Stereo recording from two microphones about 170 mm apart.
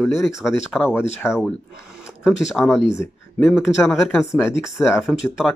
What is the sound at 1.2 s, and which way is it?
Speech, 5° right (ahead or behind).